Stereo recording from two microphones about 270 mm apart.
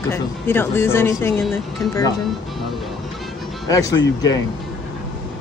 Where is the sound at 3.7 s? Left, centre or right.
Centre.